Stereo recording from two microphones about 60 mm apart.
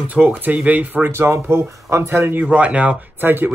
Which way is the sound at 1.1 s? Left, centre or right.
Right.